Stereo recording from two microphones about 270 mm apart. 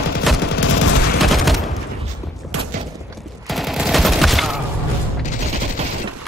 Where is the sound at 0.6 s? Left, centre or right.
Left.